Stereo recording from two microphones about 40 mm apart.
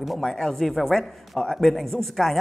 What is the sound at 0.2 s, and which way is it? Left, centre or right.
A man's voice, centre.